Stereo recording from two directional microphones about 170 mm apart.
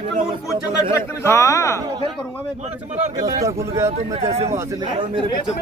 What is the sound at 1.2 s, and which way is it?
Speech, 15° left (ahead or behind).